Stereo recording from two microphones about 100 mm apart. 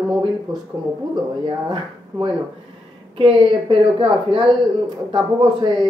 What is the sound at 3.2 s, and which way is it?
A woman's voice, 60° right (ahead or behind).